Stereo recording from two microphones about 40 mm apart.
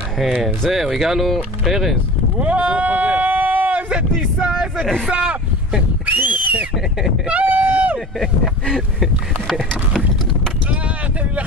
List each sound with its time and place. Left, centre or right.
0.2 s speech: centre
2.3 s a sound: right
3.9 s speech: right
4.6 s vehicle: centre
5.1 s speech: right
6.0 s a sound: right
8.2 s speech: centre